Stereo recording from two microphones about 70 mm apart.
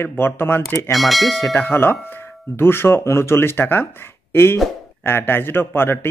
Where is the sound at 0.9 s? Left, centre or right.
Centre.